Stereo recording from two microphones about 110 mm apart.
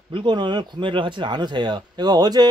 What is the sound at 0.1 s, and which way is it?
Speech, 45° right (ahead or behind).